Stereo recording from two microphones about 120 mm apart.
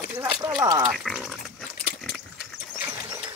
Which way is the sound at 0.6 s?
35° right (ahead or behind).